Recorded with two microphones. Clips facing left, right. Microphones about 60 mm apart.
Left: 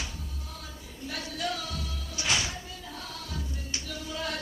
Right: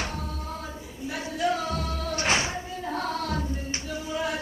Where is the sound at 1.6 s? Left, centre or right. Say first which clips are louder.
Right 9 dB; right.